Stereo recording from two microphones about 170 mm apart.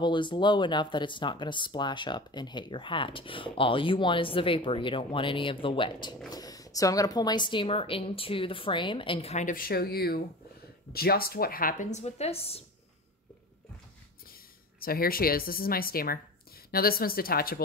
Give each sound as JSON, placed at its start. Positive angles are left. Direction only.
{"t": 0.0, "sound": "speech", "side_deg": 30}
{"t": 14.3, "sound": "speech", "side_deg": 60}